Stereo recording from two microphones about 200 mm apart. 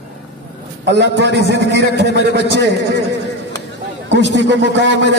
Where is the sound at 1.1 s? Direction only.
60° right (ahead or behind).